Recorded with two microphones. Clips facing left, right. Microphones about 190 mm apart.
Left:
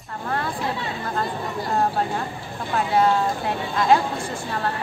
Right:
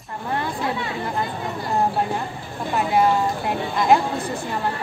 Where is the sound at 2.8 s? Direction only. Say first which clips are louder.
Right 1 dB; 10° right (ahead or behind).